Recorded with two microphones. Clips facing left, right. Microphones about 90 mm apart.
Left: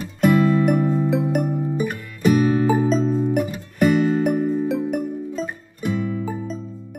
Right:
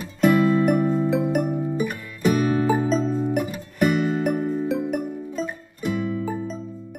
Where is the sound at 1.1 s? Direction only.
Centre (ahead or behind).